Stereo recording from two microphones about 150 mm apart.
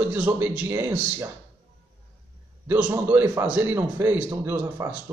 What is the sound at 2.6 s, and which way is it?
A man's voice, 10° right (ahead or behind).